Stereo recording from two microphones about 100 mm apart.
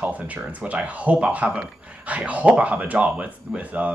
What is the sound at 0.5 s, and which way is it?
Speech, 15° right (ahead or behind).